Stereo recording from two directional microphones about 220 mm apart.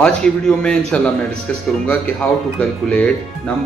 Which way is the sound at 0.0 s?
5° left (ahead or behind).